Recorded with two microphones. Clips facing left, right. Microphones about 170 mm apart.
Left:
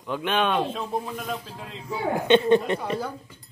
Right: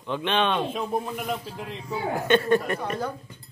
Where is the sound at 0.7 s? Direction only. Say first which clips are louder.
Right 1 dB; 10° right (ahead or behind).